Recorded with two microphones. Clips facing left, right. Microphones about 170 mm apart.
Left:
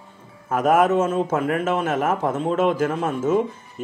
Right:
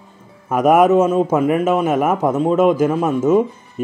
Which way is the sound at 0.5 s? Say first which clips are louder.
Right 5 dB; 15° right (ahead or behind).